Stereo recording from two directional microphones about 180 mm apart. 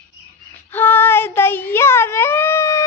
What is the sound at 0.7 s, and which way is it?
Child singing, 10° left (ahead or behind).